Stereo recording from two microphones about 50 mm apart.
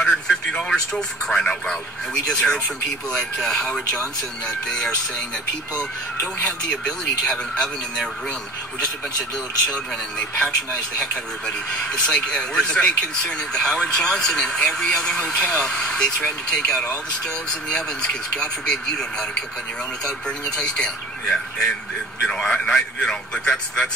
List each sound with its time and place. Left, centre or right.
0.0 s speech: centre
6.4 s speech: centre
9.7 s a man's voice: centre